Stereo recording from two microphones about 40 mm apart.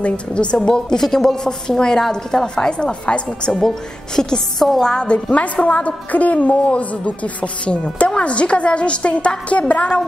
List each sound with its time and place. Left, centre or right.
0.0 s a woman's voice: left
3.5 s a woman's voice: centre
4.8 s a woman's voice: left